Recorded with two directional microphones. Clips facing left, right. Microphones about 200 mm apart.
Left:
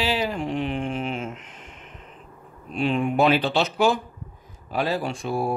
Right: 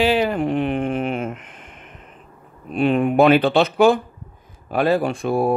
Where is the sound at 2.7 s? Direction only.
55° right (ahead or behind).